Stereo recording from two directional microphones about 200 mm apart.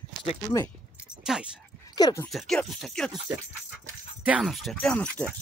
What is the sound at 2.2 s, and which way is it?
Speech, centre (ahead or behind).